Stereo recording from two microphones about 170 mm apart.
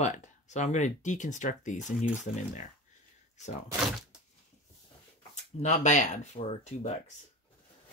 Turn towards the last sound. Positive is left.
turn(degrees=40)  # may be behind; listen again after turning